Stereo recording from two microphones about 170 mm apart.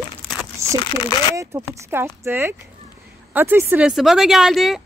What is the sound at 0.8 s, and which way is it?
Speech, 30° left (ahead or behind).